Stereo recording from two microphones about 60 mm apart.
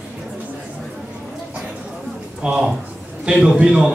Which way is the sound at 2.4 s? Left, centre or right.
Centre.